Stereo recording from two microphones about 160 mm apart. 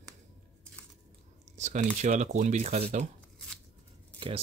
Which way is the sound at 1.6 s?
45° right (ahead or behind).